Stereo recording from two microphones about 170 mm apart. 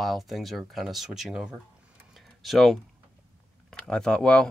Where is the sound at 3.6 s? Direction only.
5° left (ahead or behind).